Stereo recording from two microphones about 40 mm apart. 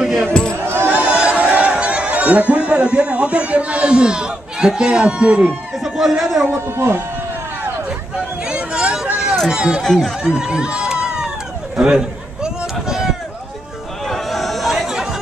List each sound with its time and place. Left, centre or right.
0.0 s a sound: centre
1.0 s a sound: right
2.2 s a man's voice: right
5.9 s a man's voice: centre
6.5 s speech: right
8.5 s a sound: right
9.5 s a man's voice: centre
10.2 s run: right
11.7 s a man's voice: right
12.8 s run: centre
14.0 s chatter: centre